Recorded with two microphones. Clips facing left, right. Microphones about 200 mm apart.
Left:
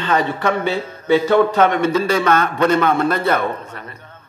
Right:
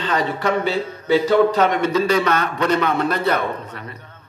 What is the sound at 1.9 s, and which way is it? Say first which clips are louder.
A man's voice: left 1 dB; 50° left (ahead or behind).